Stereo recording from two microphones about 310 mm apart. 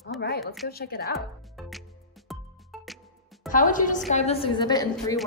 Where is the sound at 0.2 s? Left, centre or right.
Left.